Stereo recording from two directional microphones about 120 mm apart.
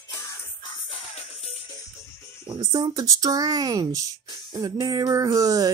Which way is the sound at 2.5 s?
30° right (ahead or behind).